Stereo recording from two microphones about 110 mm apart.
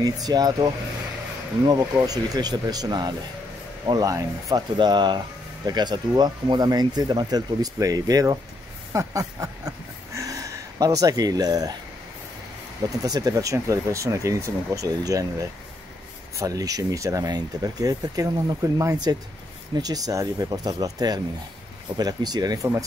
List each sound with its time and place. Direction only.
0.0 s speech: 35° right (ahead or behind)
1.7 s speech: 35° right (ahead or behind)
4.7 s speech: 40° right (ahead or behind)
8.9 s a sound: 30° right (ahead or behind)
12.9 s speech: 35° right (ahead or behind)